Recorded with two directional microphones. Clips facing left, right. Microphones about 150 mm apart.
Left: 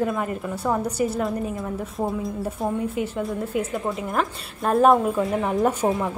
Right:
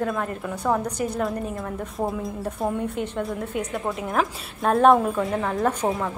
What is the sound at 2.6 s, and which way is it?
A woman's voice, centre (ahead or behind).